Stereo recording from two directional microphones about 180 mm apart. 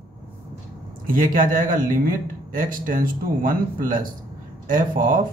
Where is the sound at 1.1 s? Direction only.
50° right (ahead or behind).